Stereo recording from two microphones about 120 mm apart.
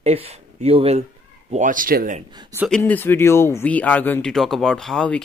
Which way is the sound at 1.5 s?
90° right.